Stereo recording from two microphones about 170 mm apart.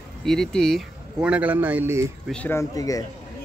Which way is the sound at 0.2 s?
5° left (ahead or behind).